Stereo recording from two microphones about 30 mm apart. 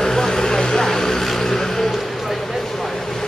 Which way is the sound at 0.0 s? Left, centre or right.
Centre.